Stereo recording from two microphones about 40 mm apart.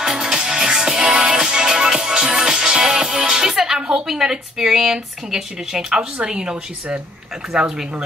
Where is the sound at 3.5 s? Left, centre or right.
Centre.